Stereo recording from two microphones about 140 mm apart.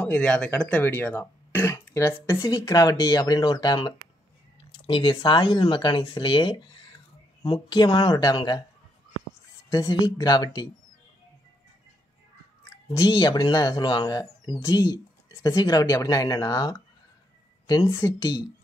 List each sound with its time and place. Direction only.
0.0 s speech: 5° left (ahead or behind); by 8.6 s 30° left (ahead or behind)
9.7 s speech: 25° left (ahead or behind)
12.9 s speech: 30° left (ahead or behind)